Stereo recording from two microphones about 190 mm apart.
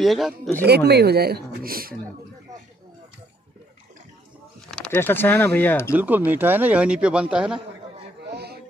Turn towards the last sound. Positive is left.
turn(degrees=-5)  # may be behind; listen again after turning